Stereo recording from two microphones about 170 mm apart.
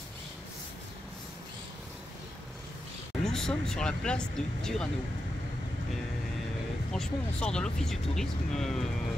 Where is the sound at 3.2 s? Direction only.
5° left (ahead or behind).